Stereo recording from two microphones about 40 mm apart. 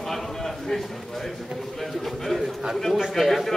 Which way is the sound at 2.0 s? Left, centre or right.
Centre.